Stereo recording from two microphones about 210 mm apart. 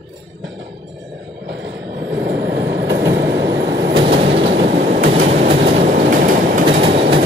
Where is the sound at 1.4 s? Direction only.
55° right (ahead or behind).